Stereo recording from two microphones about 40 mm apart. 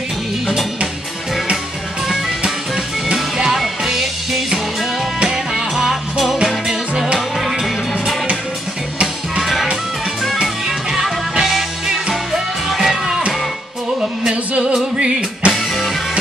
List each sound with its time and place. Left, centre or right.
3.4 s music: centre
9.4 s music: centre
10.4 s music: centre
14.3 s music: right